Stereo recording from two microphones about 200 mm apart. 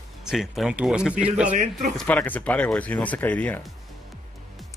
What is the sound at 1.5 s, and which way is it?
Speech, 35° right (ahead or behind).